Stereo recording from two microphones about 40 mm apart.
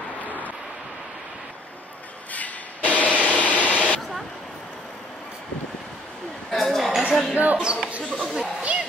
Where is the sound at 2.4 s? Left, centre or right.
Left.